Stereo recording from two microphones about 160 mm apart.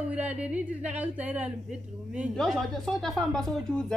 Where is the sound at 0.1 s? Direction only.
10° right (ahead or behind).